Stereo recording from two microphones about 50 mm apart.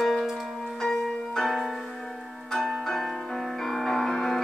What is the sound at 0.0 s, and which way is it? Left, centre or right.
Tick-tock, centre.